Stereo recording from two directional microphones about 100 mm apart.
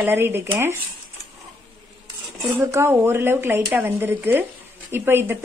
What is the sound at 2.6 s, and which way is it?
A woman's voice, 25° right (ahead or behind).